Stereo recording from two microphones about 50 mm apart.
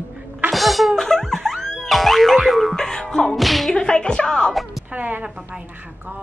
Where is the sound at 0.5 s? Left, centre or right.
Centre.